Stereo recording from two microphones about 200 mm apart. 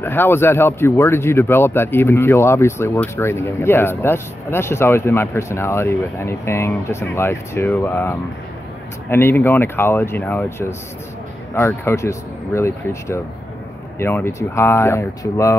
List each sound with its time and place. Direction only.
0.0 s a man's voice: 10° left (ahead or behind)